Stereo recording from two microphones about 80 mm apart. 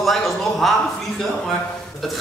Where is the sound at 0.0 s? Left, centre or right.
Centre.